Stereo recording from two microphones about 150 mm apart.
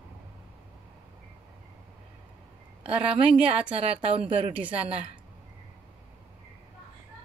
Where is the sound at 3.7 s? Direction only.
40° right (ahead or behind).